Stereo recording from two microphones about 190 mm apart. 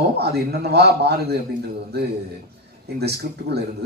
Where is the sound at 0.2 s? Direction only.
55° right (ahead or behind).